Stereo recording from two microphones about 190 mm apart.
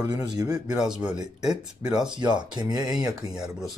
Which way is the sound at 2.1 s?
25° right (ahead or behind).